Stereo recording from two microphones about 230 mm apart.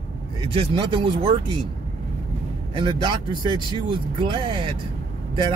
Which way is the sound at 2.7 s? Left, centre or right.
Right.